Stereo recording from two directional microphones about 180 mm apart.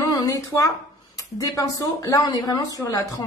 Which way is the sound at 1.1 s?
20° left (ahead or behind).